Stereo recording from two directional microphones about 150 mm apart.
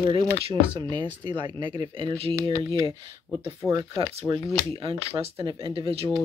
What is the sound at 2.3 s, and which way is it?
Speech, 25° right (ahead or behind).